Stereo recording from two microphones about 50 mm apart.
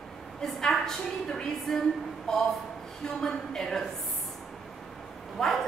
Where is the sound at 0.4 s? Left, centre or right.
Centre.